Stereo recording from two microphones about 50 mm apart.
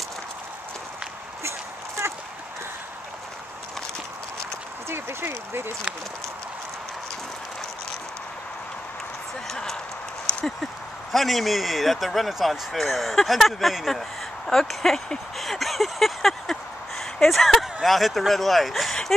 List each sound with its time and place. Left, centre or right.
4.8 s speech: right
9.5 s speech: centre
14.5 s a sound: centre
17.2 s speech: centre